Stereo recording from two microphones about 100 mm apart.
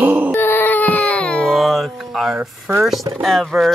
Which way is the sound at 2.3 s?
20° right (ahead or behind).